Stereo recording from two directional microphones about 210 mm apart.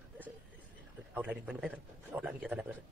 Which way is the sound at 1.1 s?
5° right (ahead or behind).